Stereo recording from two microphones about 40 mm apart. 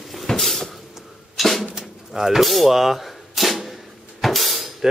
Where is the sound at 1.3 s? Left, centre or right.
Centre.